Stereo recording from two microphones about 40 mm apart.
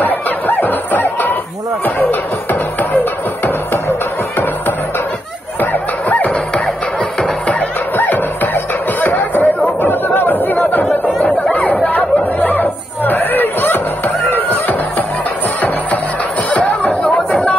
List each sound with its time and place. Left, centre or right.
0.0 s snicker: left
2.0 s music: left
5.6 s music: left
7.9 s music: left
9.8 s chatter: left
11.6 s chatter: left
12.4 s chatter: left
16.5 s chatter: left